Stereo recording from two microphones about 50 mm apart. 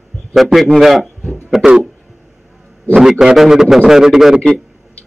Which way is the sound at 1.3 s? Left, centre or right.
Centre.